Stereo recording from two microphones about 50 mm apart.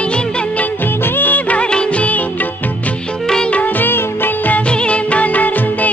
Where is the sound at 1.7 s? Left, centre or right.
Left.